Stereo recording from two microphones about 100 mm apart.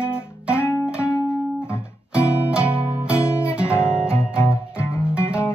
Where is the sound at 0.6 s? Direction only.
25° left (ahead or behind).